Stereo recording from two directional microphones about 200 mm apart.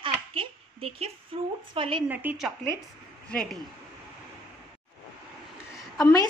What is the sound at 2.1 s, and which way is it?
Speech, 10° right (ahead or behind).